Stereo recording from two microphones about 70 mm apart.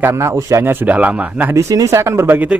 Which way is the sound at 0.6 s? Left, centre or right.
Right.